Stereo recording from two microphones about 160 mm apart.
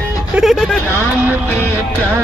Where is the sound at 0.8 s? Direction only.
15° left (ahead or behind).